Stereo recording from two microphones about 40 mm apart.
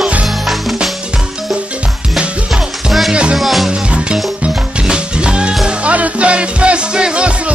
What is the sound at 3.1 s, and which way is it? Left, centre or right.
Music, right.